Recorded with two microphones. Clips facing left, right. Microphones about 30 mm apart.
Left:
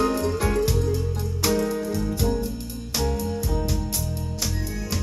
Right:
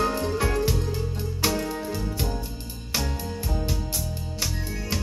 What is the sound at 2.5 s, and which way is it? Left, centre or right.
Music, right.